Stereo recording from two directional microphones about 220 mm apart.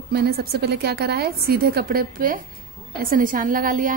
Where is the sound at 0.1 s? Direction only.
45° right (ahead or behind).